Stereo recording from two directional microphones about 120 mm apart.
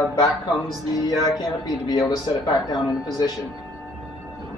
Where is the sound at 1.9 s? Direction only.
35° left (ahead or behind).